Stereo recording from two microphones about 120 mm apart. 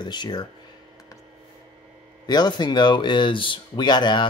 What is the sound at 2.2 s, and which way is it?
Speech, 35° left (ahead or behind).